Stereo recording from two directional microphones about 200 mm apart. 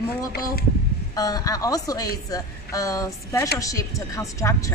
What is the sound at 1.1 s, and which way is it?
A woman's voice, 20° left (ahead or behind).